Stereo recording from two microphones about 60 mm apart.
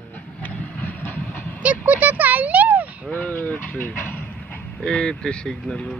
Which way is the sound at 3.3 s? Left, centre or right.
Left.